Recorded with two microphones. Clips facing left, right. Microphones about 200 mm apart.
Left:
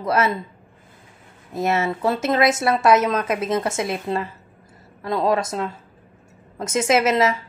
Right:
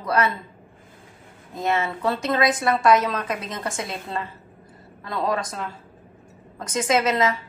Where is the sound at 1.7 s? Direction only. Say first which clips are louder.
Left 2 dB; 25° left (ahead or behind).